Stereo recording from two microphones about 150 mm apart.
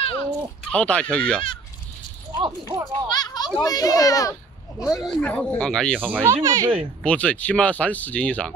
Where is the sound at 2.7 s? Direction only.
20° right (ahead or behind).